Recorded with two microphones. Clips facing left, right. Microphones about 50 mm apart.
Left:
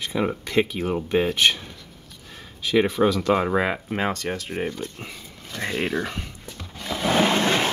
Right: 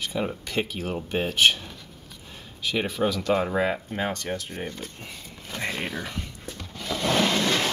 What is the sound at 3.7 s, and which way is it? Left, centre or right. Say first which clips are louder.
Speech: left 3 dB; left.